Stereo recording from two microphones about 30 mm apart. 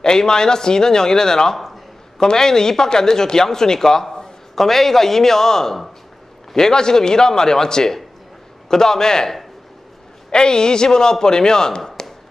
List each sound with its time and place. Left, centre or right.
0.0 s speech: left
4.6 s a man's voice: centre
10.3 s speech: left